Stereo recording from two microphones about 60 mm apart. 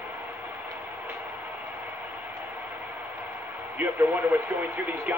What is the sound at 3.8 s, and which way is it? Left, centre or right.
Speech, right.